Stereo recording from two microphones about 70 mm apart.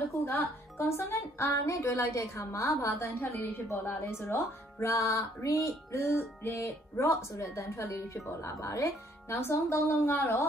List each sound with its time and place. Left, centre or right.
0.1 s a woman's voice: left
9.9 s speech: left